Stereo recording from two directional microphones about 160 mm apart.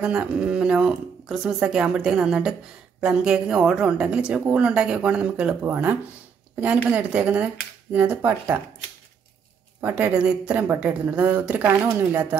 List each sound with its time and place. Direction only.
0.0 s a woman's voice: 5° right (ahead or behind)
9.8 s a woman's voice: 10° right (ahead or behind)